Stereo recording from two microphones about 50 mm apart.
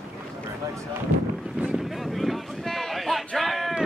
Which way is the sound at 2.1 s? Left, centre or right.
Centre.